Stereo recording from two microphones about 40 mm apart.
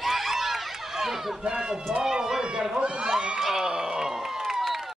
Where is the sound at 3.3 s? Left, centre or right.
Centre.